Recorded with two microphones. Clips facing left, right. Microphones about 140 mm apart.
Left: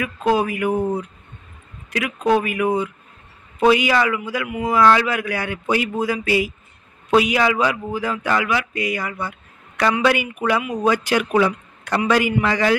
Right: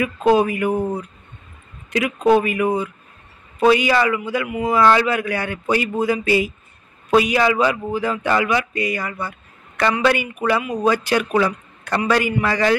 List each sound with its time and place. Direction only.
0.0 s speech: centre (ahead or behind)
1.9 s speech: centre (ahead or behind)
3.7 s speech: 5° left (ahead or behind)